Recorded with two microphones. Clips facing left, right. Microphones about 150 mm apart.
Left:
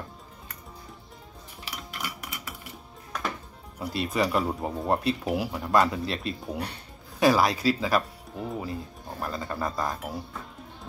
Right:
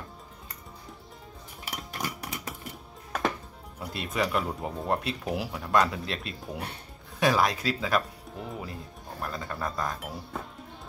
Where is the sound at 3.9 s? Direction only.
Centre (ahead or behind).